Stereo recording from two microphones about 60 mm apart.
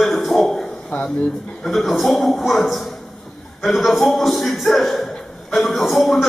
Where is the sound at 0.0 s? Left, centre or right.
Centre.